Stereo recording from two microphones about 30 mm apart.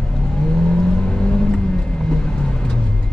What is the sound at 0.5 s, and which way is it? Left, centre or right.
Vehicle, left.